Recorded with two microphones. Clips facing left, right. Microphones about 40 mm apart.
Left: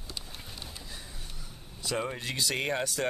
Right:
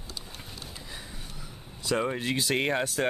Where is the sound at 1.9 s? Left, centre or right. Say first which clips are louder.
Right 5 dB; centre.